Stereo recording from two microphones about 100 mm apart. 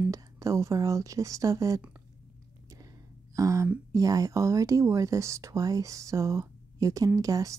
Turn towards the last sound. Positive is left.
turn(degrees=-35)  # may be behind; listen again after turning